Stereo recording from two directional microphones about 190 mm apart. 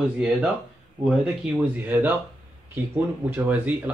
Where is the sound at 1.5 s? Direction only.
10° right (ahead or behind).